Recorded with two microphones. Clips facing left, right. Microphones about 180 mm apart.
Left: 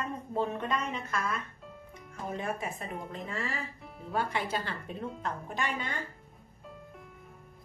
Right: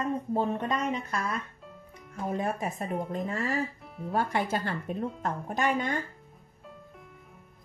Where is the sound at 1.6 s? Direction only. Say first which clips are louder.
Even; centre (ahead or behind).